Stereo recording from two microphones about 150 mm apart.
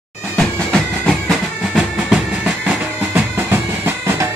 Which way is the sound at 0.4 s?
5° left (ahead or behind).